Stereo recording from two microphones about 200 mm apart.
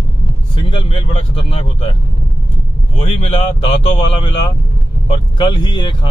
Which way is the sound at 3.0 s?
30° left (ahead or behind).